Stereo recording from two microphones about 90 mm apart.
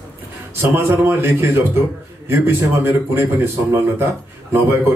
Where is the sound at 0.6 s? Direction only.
25° right (ahead or behind).